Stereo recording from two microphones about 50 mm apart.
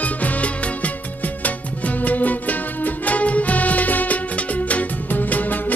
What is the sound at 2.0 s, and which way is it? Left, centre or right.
Music, left.